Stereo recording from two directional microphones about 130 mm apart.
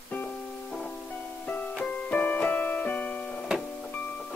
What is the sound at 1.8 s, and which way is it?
Keyboard, 10° left (ahead or behind).